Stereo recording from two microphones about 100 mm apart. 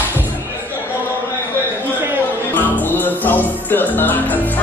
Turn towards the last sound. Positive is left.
turn(degrees=15)  # may be behind; listen again after turning